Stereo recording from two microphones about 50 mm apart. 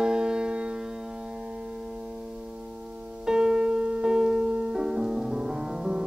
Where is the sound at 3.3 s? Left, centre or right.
Centre.